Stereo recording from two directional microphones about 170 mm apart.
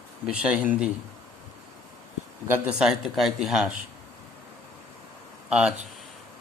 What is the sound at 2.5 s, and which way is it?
Speech, 5° right (ahead or behind).